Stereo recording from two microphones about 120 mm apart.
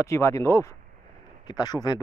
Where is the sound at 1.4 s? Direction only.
35° left (ahead or behind).